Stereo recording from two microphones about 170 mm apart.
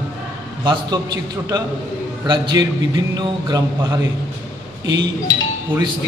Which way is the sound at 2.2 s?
25° right (ahead or behind).